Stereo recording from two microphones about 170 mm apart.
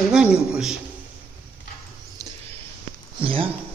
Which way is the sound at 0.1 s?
5° right (ahead or behind).